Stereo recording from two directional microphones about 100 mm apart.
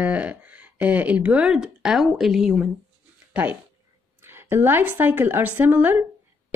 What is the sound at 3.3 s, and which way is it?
A woman's voice, 15° right (ahead or behind).